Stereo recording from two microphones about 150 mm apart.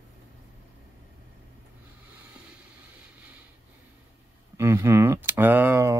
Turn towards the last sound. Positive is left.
turn(degrees=-15)  # may be behind; listen again after turning